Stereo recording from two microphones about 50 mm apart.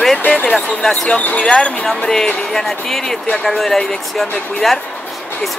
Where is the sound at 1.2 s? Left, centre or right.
Left.